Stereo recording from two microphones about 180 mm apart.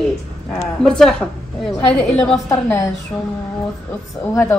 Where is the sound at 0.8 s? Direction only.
5° left (ahead or behind).